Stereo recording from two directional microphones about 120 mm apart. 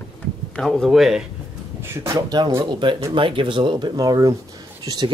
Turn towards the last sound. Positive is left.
turn(degrees=-35)  # may be behind; listen again after turning